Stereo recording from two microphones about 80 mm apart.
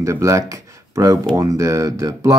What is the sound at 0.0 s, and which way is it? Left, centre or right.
Speech, right.